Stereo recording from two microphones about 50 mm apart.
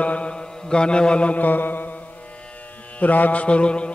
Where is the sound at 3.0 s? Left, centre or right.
Left.